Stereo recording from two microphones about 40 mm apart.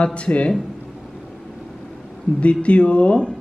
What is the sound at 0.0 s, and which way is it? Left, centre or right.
Speech, left.